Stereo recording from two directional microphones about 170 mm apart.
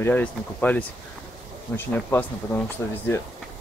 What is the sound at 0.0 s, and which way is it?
Speech, 10° left (ahead or behind).